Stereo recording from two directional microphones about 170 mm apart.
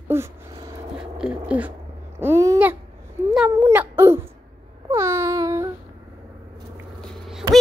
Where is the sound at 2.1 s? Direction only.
15° right (ahead or behind).